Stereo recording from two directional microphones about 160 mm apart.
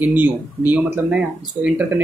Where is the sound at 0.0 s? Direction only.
10° right (ahead or behind).